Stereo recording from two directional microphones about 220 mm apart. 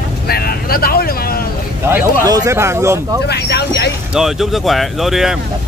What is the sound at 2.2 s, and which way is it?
Speech, 15° right (ahead or behind).